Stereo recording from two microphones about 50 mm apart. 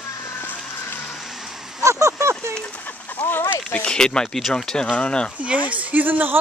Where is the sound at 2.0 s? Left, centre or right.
Right.